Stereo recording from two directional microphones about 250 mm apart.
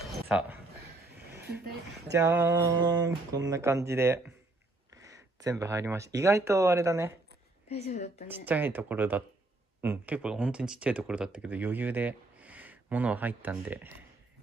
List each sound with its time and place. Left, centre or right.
0.0 s a sound: centre
2.1 s speech: centre
7.6 s a woman's voice: left
8.3 s speech: centre